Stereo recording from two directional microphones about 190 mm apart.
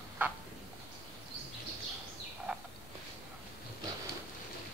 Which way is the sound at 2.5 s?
10° right (ahead or behind).